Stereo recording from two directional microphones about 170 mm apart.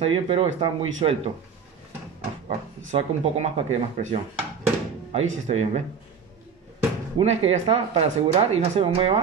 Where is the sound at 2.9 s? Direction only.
40° right (ahead or behind).